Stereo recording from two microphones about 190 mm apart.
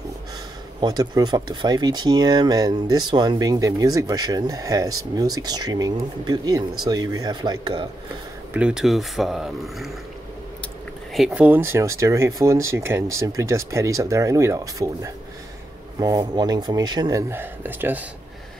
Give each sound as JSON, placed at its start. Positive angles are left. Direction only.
{"t": 0.7, "sound": "speech", "side_deg": -20}
{"t": 8.5, "sound": "speech", "side_deg": -5}
{"t": 11.1, "sound": "speech", "side_deg": -5}